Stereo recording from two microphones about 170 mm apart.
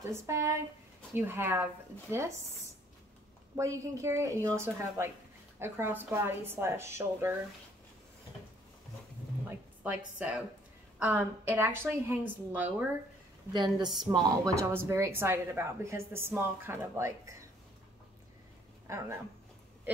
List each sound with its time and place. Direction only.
0.3 s speech: 15° right (ahead or behind)
3.5 s speech: 20° right (ahead or behind)
9.8 s speech: 10° right (ahead or behind)
13.5 s a woman's voice: 25° right (ahead or behind)
18.9 s speech: 15° right (ahead or behind)